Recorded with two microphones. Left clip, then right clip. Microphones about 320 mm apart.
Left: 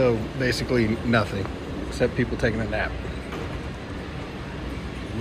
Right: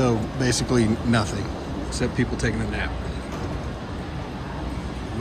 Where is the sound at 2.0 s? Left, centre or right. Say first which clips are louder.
Left 3 dB; centre.